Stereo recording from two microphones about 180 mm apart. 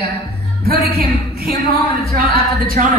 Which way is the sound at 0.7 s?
60° right (ahead or behind).